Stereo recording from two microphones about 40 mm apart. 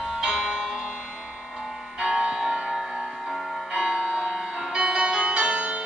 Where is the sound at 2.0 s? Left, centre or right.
Right.